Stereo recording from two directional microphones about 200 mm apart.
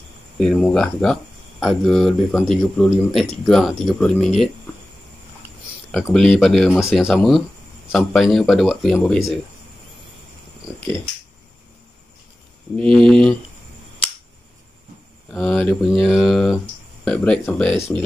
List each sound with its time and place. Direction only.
0.4 s speech: centre (ahead or behind)
5.9 s speech: 5° left (ahead or behind)
13.0 s speech: 5° left (ahead or behind)
15.3 s speech: 5° left (ahead or behind)